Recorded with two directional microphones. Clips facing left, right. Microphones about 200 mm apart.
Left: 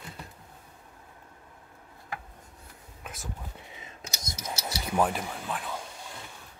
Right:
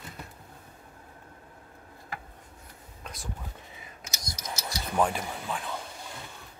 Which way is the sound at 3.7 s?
25° left (ahead or behind).